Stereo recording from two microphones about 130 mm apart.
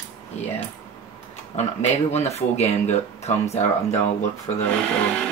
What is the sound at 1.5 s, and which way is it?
Speech, 60° left (ahead or behind).